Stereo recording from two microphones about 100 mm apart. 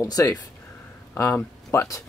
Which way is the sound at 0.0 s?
35° left (ahead or behind).